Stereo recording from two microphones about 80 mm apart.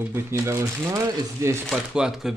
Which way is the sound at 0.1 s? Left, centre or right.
Right.